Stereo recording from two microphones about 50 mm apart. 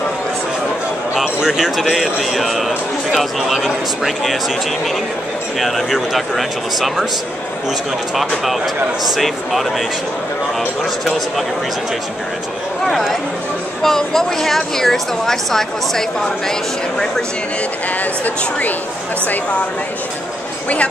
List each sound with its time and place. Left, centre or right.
1.2 s a sound: centre
1.8 s a man's voice: centre
5.6 s a man's voice: centre
9.0 s a man's voice: centre
13.8 s speech: centre
20.6 s speech: left